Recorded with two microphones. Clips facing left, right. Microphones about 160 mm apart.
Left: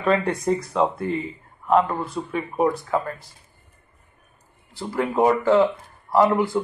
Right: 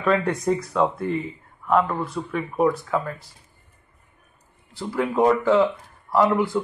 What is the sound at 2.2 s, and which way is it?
Speech, 20° left (ahead or behind).